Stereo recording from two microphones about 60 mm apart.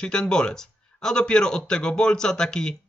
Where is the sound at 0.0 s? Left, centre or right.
Centre.